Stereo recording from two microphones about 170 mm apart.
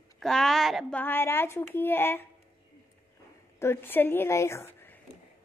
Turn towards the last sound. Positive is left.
turn(degrees=15)  # may be behind; listen again after turning